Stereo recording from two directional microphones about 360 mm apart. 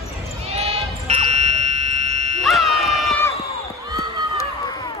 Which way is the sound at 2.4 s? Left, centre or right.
Centre.